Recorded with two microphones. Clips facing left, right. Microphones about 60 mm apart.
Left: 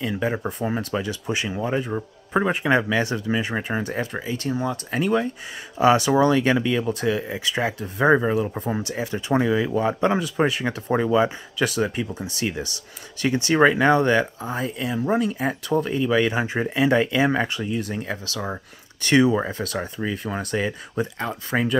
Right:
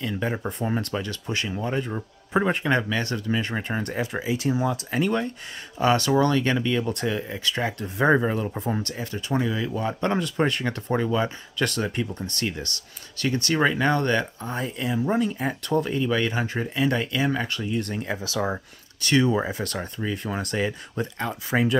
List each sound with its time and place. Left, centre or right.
0.0 s speech: centre
7.3 s speech: centre
7.8 s speech: centre
8.9 s speech: left
17.6 s speech: centre
19.2 s speech: centre